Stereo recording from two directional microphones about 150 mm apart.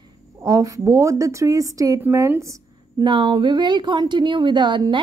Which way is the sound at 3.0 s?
35° right (ahead or behind).